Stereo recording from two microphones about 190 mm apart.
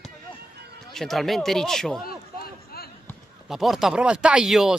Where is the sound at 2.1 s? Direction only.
55° left (ahead or behind).